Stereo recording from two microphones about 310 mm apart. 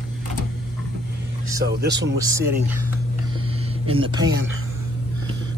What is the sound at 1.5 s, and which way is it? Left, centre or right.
Speech, right.